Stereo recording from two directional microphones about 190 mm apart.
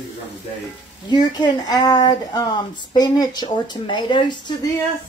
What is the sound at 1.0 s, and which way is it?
Speech, 20° left (ahead or behind).